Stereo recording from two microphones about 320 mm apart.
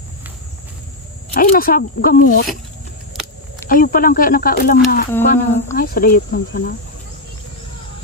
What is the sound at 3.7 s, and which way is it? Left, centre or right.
Speech, left.